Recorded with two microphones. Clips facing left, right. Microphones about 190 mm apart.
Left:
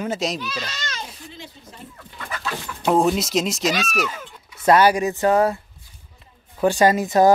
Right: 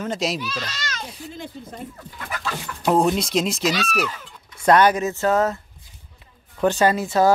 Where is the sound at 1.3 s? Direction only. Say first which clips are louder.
Right 5 dB; 50° right (ahead or behind).